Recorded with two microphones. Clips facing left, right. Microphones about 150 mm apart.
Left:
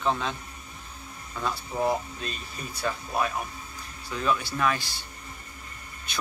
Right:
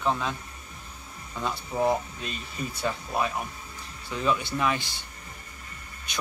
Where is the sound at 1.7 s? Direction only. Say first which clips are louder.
Right 2 dB; 15° right (ahead or behind).